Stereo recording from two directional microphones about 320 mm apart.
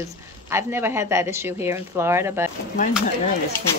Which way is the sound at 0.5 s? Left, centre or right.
Centre.